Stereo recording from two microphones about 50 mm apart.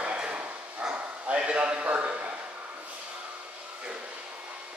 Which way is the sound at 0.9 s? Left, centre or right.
Right.